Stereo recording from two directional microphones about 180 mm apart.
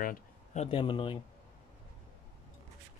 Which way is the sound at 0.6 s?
30° left (ahead or behind).